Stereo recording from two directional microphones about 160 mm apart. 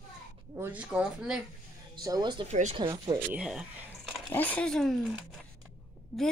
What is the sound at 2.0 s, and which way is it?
Speech, 25° right (ahead or behind).